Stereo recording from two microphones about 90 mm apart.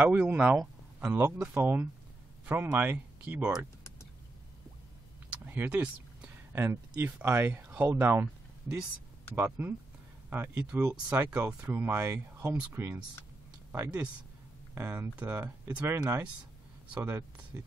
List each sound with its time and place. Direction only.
0.0 s speech: 20° right (ahead or behind)
5.3 s a sound: 25° right (ahead or behind)
6.5 s speech: 25° right (ahead or behind)
13.7 s a sound: 25° right (ahead or behind)
14.7 s speech: 25° right (ahead or behind)
16.9 s speech: 20° right (ahead or behind)